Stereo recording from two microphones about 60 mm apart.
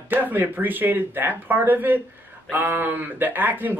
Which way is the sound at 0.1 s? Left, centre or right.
Right.